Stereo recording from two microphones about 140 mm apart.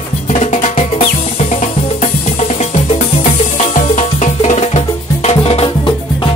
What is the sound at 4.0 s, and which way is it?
Music, 50° left (ahead or behind).